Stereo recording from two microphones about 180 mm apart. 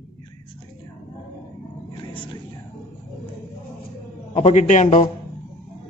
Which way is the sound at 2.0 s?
25° left (ahead or behind).